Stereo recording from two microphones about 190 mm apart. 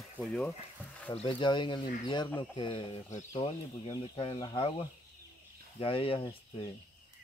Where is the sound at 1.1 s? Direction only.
25° left (ahead or behind).